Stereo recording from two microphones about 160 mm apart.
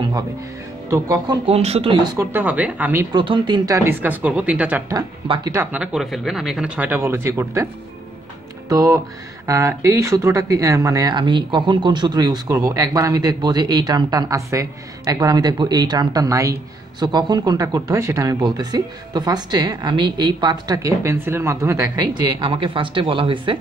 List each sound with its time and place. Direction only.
0.8 s speech: 20° right (ahead or behind)
1.5 s speech: 40° right (ahead or behind)
2.0 s speech: 15° right (ahead or behind)
3.1 s speech: 30° right (ahead or behind); by 4.9 s 10° right (ahead or behind)
4.9 s speech: 25° right (ahead or behind)
5.6 s speech: 10° right (ahead or behind)
8.6 s speech: 25° right (ahead or behind)
22.4 s speech: 30° right (ahead or behind)